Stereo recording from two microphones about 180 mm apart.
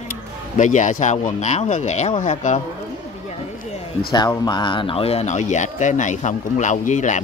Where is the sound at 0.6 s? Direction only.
45° left (ahead or behind).